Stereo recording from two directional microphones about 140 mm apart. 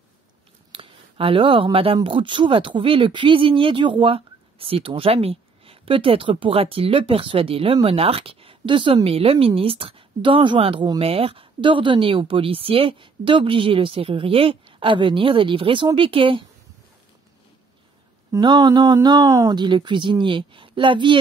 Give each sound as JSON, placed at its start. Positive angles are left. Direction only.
{"t": 0.7, "sound": "a sound", "side_deg": -40}
{"t": 2.0, "sound": "speech", "side_deg": -35}
{"t": 18.3, "sound": "speech", "side_deg": -30}